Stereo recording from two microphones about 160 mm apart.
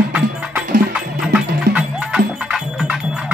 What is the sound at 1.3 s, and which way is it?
Music, 5° right (ahead or behind).